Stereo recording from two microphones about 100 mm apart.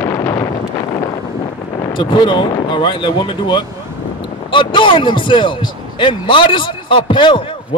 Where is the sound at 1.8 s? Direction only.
50° left (ahead or behind).